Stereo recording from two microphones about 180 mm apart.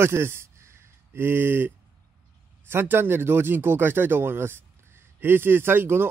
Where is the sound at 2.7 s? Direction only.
10° right (ahead or behind).